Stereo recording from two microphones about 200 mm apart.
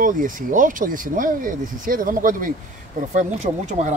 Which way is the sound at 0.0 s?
40° right (ahead or behind).